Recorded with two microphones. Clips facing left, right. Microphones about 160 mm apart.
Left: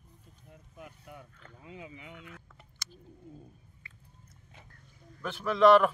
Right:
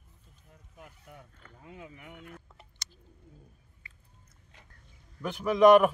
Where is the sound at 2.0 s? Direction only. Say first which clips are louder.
Right 1 dB; 45° right (ahead or behind).